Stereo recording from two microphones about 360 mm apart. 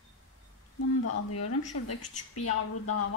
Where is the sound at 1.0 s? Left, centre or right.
Left.